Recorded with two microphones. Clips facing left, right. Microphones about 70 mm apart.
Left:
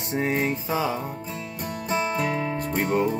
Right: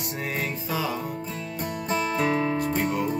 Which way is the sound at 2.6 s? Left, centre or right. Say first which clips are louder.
Left 1 dB; left.